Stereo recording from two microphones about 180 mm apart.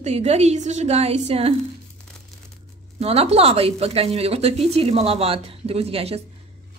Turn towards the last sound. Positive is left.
turn(degrees=-35)  # may be behind; listen again after turning